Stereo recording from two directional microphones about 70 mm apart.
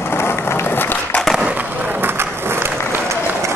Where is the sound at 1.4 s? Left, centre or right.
Right.